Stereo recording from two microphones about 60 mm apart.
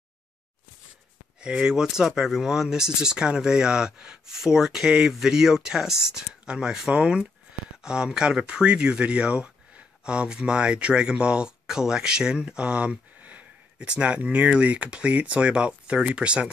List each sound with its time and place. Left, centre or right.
1.4 s speech: centre